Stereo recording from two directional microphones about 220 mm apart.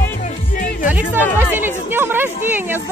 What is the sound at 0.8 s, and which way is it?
Speech, 5° right (ahead or behind).